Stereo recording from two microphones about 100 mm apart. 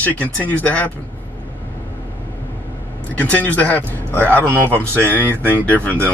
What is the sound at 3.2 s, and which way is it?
Speech, 15° left (ahead or behind).